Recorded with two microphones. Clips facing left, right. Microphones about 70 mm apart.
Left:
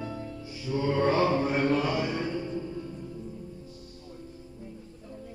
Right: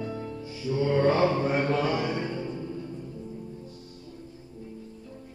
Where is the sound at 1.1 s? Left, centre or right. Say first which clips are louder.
Right 1 dB; right.